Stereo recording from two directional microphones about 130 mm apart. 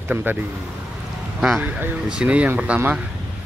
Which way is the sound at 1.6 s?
10° right (ahead or behind).